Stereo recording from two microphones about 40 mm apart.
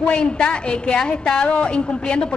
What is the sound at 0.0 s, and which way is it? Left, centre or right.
A woman's voice, left.